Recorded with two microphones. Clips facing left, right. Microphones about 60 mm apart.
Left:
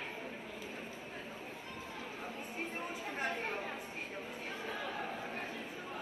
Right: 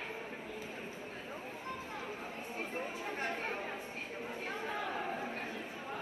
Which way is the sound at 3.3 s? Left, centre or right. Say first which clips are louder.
Even; right.